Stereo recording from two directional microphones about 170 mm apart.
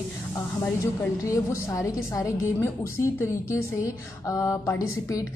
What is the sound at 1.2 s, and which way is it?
A woman's voice, 20° left (ahead or behind).